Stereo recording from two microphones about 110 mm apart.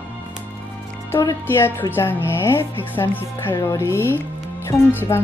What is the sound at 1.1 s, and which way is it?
A woman's voice, 25° left (ahead or behind).